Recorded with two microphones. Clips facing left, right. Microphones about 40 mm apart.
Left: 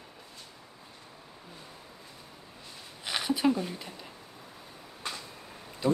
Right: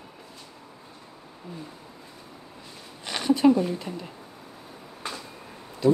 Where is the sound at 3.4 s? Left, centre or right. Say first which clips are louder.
Right 8 dB; centre.